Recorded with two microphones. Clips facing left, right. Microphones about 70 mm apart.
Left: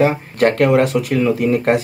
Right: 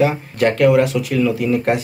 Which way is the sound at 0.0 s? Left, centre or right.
Left.